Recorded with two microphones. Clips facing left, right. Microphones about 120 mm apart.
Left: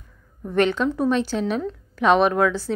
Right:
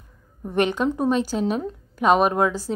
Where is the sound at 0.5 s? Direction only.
15° right (ahead or behind).